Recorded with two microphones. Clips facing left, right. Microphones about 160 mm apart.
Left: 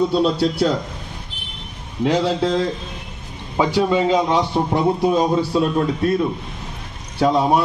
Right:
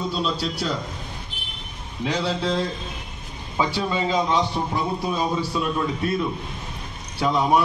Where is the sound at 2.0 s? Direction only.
50° left (ahead or behind).